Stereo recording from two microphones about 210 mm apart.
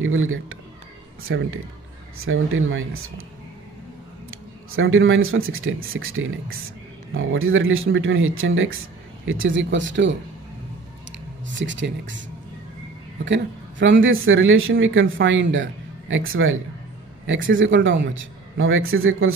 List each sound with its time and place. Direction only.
0.0 s speech: 70° right (ahead or behind)
2.1 s speech: 75° right (ahead or behind)
4.3 s speech: 75° right (ahead or behind)
13.2 s speech: 60° right (ahead or behind)
17.3 s speech: 65° right (ahead or behind)